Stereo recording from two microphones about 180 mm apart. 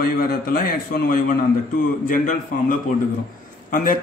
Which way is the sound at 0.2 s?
55° left (ahead or behind).